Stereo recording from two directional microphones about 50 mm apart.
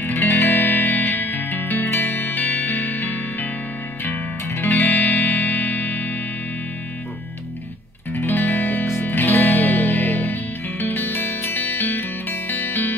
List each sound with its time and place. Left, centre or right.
0.0 s music: left
8.1 s music: left